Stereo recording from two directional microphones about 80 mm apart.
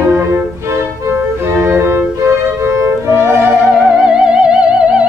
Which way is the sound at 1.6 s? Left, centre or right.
Right.